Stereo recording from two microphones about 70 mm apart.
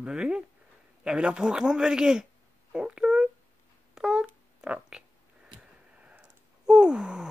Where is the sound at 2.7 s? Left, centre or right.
Centre.